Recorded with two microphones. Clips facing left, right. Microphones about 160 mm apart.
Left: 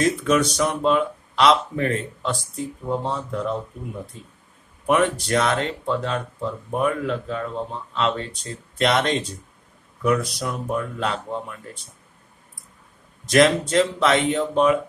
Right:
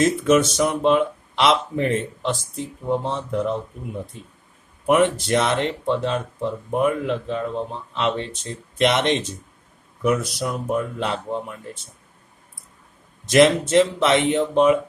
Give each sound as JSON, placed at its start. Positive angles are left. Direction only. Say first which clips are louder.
{"t": 0.0, "sound": "speech", "louder": "right 3 dB", "side_deg": -25}
{"t": 4.8, "sound": "speech", "louder": "right 2 dB", "side_deg": -20}
{"t": 10.7, "sound": "speech", "louder": "right 1 dB", "side_deg": -20}
{"t": 13.3, "sound": "speech", "louder": "right 2 dB", "side_deg": -25}